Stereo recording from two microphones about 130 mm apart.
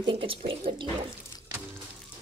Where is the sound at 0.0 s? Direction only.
40° right (ahead or behind).